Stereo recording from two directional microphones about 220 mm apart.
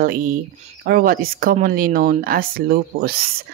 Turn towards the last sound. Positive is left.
turn(degrees=-45)  # may be behind; listen again after turning